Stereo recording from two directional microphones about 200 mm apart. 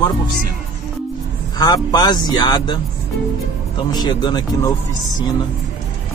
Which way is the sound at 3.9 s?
20° left (ahead or behind).